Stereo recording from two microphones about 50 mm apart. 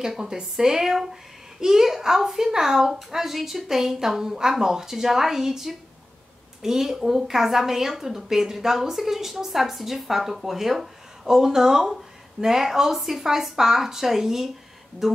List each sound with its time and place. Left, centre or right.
0.0 s a woman's voice: centre